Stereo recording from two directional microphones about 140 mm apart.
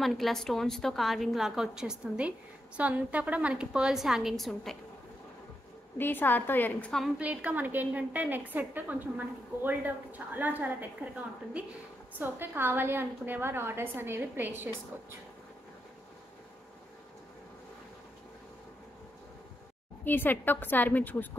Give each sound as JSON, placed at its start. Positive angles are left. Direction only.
{"t": 0.0, "sound": "a woman's voice", "side_deg": 0}
{"t": 5.9, "sound": "a woman's voice", "side_deg": 15}
{"t": 7.2, "sound": "a woman's voice", "side_deg": -10}
{"t": 12.2, "sound": "a woman's voice", "side_deg": -15}
{"t": 20.1, "sound": "a woman's voice", "side_deg": 15}